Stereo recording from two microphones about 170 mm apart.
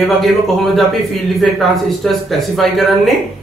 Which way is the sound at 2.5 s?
Centre (ahead or behind).